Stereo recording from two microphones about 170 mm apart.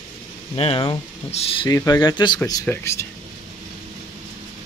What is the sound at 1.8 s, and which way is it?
Speech, 20° left (ahead or behind).